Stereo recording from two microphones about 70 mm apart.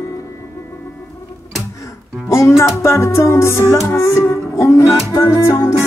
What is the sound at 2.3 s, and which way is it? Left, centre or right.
Music, left.